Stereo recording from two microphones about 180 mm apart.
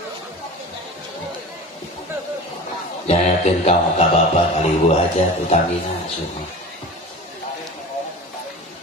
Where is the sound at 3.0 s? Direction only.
35° left (ahead or behind).